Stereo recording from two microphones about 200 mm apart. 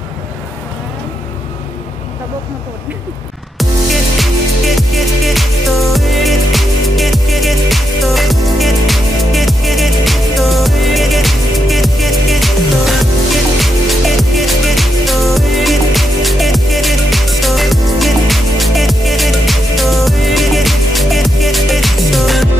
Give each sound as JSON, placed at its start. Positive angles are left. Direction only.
{"t": 4.2, "sound": "music", "side_deg": 0}